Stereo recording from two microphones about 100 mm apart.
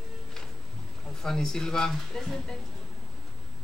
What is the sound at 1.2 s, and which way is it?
Speech, 5° left (ahead or behind).